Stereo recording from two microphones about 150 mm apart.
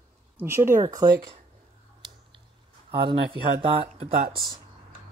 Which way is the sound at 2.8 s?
35° right (ahead or behind).